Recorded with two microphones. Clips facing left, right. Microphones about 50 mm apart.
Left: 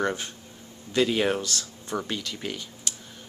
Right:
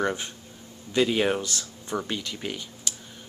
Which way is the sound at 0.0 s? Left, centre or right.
Centre.